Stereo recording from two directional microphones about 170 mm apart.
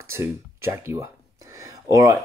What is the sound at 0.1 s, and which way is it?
Speech, 15° right (ahead or behind).